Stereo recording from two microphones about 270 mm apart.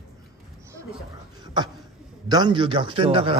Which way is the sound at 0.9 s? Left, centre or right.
Centre.